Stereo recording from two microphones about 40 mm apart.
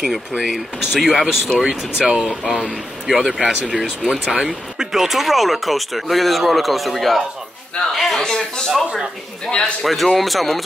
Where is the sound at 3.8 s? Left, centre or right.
Centre.